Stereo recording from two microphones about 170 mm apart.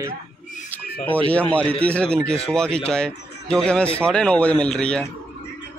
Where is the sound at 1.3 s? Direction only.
10° left (ahead or behind).